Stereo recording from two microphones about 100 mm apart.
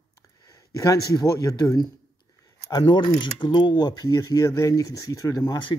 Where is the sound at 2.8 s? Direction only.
55° left (ahead or behind).